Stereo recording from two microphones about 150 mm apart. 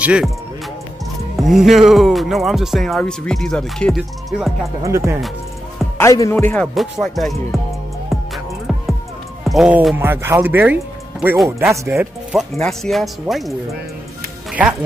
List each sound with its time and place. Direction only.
0.0 s speech: 5° right (ahead or behind)
1.3 s speech: centre (ahead or behind)
4.8 s speech: 20° right (ahead or behind)
5.9 s speech: 20° left (ahead or behind)
6.3 s speech: 10° left (ahead or behind)
9.4 s speech: centre (ahead or behind); by 12.1 s 20° right (ahead or behind)
12.3 s speech: centre (ahead or behind)
14.5 s speech: 10° right (ahead or behind)